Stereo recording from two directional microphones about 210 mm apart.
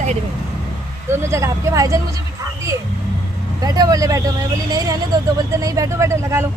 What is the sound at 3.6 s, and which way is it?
Speech, 15° right (ahead or behind).